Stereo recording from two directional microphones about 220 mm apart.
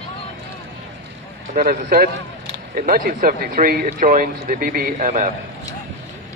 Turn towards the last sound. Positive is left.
turn(degrees=-35)  # may be behind; listen again after turning